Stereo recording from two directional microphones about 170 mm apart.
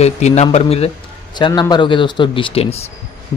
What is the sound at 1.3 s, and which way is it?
A man's voice, 25° left (ahead or behind).